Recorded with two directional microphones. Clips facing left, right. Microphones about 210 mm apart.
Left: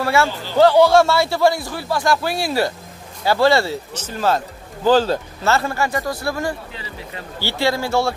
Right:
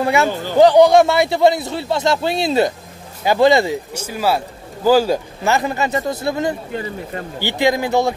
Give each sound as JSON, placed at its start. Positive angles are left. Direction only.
{"t": 0.0, "sound": "a man's voice", "side_deg": -20}
{"t": 0.3, "sound": "speech", "side_deg": -50}
{"t": 0.6, "sound": "a man's voice", "side_deg": -15}
{"t": 6.7, "sound": "speech", "side_deg": -50}
{"t": 7.3, "sound": "speech", "side_deg": -15}